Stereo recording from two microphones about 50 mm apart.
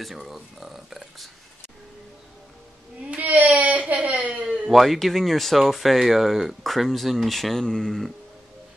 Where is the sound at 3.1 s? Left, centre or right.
Right.